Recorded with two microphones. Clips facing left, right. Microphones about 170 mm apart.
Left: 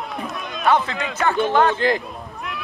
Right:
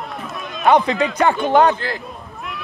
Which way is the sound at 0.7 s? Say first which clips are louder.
Right 5 dB; 15° right (ahead or behind).